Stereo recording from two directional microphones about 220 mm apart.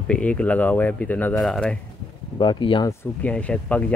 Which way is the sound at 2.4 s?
20° left (ahead or behind).